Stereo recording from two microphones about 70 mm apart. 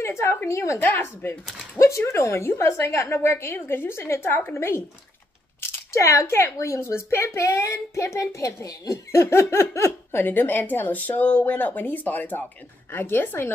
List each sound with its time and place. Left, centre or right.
0.0 s a sound: left
0.5 s speech: left
0.8 s speech: left
1.8 s a woman's voice: left
10.2 s a woman's voice: left